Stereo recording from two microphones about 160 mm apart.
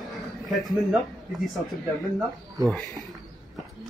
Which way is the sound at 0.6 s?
Centre (ahead or behind).